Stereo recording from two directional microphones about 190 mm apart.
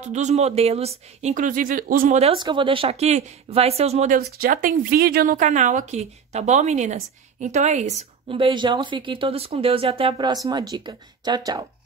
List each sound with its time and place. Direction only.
0.0 s a woman's voice: 40° right (ahead or behind)
4.2 s a woman's voice: 50° right (ahead or behind); by 11.6 s 20° right (ahead or behind)